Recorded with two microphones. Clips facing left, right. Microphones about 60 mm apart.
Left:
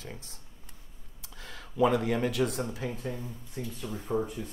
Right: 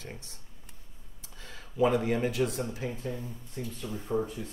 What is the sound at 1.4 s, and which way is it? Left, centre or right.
Speech, left.